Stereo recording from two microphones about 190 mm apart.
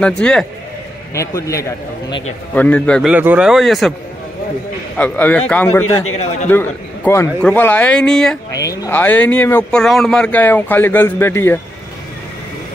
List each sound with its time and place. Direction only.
0.0 s speech: 5° left (ahead or behind)
1.1 s speech: 15° left (ahead or behind)
2.5 s speech: 10° left (ahead or behind)
3.1 s speech: 10° right (ahead or behind)
4.9 s speech: 10° left (ahead or behind)
8.5 s speech: 15° left (ahead or behind)